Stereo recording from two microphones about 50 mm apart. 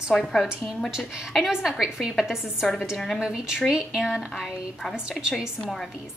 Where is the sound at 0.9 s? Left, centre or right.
Centre.